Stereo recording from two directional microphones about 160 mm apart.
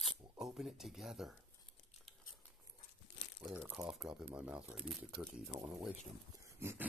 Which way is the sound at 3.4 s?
5° right (ahead or behind).